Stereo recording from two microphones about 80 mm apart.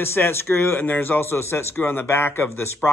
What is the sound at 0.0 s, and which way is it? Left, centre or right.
Speech, left.